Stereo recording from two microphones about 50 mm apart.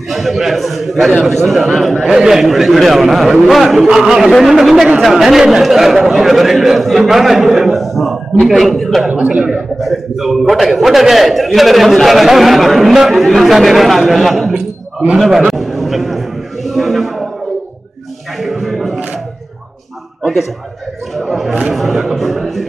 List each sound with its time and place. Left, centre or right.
0.1 s a man's voice: centre
2.0 s a man's voice: centre
9.1 s a man's voice: centre
9.8 s a man's voice: centre
14.5 s a sound: centre
15.1 s a sound: centre
18.4 s music: centre
21.2 s a man's voice: centre